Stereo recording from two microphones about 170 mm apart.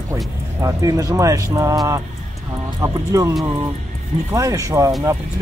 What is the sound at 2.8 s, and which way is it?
Speech, 20° right (ahead or behind).